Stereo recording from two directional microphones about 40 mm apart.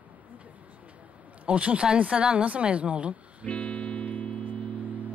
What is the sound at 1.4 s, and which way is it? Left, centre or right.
Speech, right.